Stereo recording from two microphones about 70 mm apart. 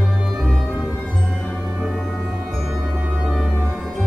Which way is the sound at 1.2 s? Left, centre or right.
Centre.